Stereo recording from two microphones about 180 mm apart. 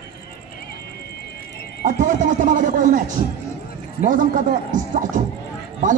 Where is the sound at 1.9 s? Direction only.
45° right (ahead or behind).